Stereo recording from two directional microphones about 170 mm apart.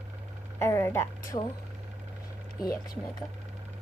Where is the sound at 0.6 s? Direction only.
15° left (ahead or behind).